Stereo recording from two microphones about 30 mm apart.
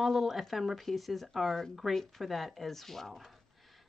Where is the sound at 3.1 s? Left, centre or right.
Centre.